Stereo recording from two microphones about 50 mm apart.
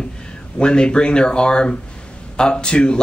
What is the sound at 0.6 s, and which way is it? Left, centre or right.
Speech, centre.